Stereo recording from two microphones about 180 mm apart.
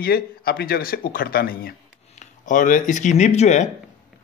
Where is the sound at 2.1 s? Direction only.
45° left (ahead or behind).